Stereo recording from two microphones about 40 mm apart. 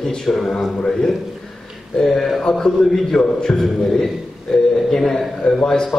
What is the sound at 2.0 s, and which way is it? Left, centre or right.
A man's voice, centre.